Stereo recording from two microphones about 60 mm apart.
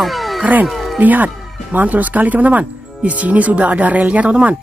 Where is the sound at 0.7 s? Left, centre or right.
Centre.